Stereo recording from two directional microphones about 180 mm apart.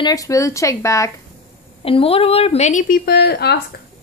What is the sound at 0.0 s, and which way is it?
Speech, 20° left (ahead or behind).